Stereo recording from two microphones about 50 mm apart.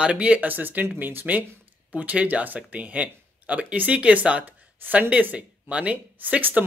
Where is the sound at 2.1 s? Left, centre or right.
Right.